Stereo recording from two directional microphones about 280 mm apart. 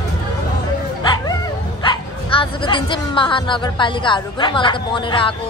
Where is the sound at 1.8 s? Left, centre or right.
Centre.